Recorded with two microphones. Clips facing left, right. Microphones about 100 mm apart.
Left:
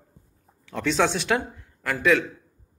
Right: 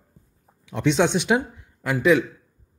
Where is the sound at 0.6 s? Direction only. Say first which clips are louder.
Right 3 dB; 20° right (ahead or behind).